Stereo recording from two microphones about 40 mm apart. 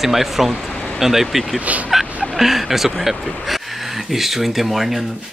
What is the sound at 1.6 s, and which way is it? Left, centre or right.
Fowl, right.